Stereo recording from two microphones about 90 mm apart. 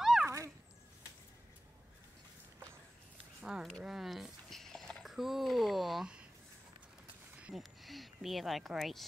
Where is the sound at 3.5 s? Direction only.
5° right (ahead or behind).